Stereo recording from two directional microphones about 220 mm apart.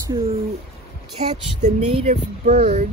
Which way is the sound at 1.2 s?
30° right (ahead or behind).